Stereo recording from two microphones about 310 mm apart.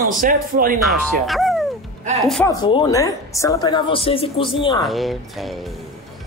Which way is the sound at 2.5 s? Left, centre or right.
Centre.